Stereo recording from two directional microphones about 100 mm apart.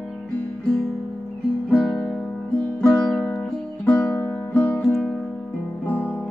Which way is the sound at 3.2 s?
15° left (ahead or behind).